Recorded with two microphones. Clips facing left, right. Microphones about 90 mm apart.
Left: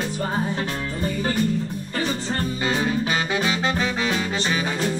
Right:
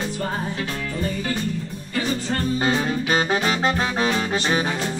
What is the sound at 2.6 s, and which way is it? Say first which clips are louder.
Music: right 1 dB; 40° right (ahead or behind).